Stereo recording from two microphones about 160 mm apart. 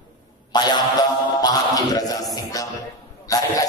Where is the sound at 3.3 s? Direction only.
20° left (ahead or behind).